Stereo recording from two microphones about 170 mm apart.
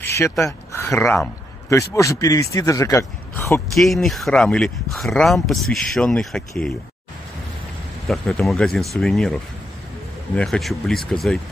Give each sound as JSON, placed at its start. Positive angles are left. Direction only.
{"t": 0.0, "sound": "a sound", "side_deg": 15}
{"t": 1.7, "sound": "speech", "side_deg": 20}
{"t": 3.7, "sound": "speech", "side_deg": 0}
{"t": 8.1, "sound": "speech", "side_deg": 0}